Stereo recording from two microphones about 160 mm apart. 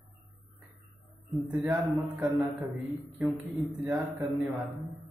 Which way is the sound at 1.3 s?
10° right (ahead or behind).